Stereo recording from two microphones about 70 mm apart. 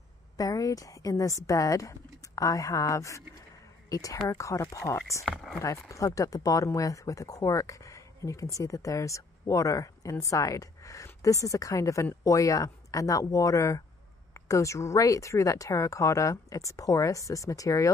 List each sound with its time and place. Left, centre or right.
0.4 s speech: left
5.3 s speech: centre
5.6 s speech: left